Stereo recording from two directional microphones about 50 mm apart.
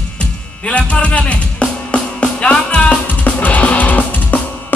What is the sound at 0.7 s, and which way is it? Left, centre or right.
Music, left.